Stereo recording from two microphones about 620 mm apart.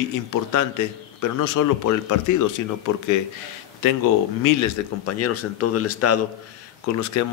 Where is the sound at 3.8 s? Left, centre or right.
Left.